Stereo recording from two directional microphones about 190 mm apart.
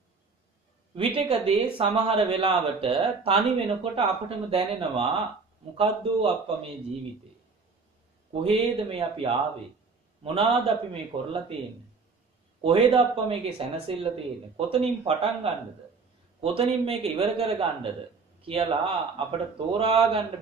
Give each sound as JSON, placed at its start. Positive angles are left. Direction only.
{"t": 0.9, "sound": "speech", "side_deg": -30}
{"t": 8.3, "sound": "speech", "side_deg": -30}
{"t": 12.6, "sound": "a man's voice", "side_deg": -30}